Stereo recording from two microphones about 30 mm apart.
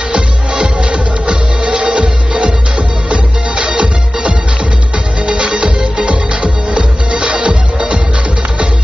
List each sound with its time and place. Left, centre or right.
0.1 s music: right